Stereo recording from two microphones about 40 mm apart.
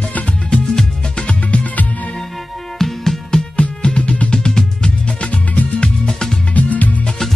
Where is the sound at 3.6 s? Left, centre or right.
Left.